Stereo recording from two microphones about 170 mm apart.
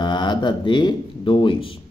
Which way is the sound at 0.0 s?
25° left (ahead or behind).